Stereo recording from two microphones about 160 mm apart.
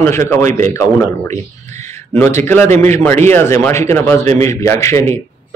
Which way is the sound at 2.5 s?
15° left (ahead or behind).